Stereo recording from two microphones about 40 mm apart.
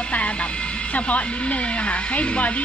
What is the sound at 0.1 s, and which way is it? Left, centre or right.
Music, left.